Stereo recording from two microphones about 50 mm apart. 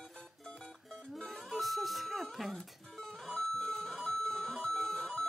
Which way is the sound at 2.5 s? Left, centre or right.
Centre.